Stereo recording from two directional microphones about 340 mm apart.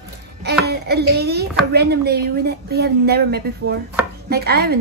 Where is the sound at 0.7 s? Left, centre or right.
Right.